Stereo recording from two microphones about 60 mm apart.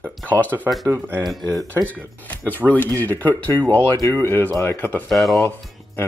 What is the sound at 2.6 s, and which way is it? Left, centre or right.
Speech, left.